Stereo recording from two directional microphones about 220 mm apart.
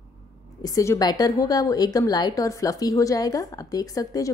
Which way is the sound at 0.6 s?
15° left (ahead or behind).